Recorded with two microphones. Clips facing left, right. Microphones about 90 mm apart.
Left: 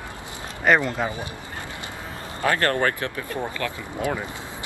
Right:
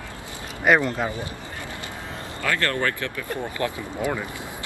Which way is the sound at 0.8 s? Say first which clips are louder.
Even; 15° left (ahead or behind).